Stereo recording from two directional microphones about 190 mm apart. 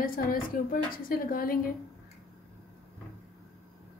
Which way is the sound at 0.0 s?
50° left (ahead or behind).